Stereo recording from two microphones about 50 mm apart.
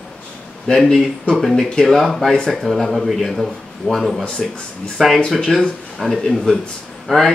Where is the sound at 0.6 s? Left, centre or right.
Centre.